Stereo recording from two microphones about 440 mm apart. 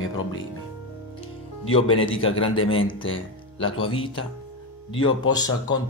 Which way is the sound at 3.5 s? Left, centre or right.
Centre.